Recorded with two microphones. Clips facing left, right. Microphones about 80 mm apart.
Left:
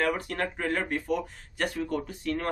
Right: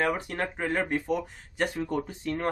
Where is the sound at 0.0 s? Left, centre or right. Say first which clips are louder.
Even; centre.